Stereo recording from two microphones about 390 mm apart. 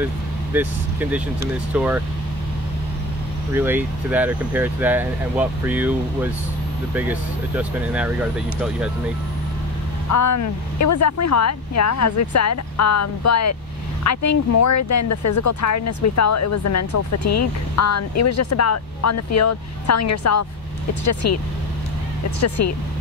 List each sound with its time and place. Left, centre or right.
0.0 s vehicle: centre
1.7 s speech: centre
3.5 s speech: centre
10.0 s speech: left
22.6 s speech: left